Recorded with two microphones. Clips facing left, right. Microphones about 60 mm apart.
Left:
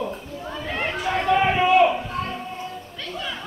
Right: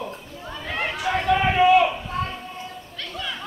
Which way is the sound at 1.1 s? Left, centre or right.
Centre.